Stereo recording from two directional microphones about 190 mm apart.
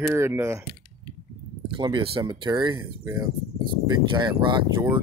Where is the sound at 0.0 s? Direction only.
15° right (ahead or behind).